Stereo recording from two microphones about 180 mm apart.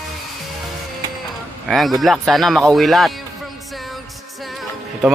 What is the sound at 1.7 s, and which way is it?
Speech, centre (ahead or behind).